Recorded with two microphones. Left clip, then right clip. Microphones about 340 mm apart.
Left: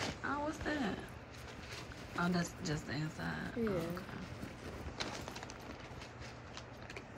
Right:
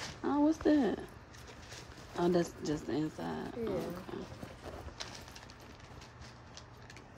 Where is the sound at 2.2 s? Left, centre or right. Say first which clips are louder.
Right 9 dB; right.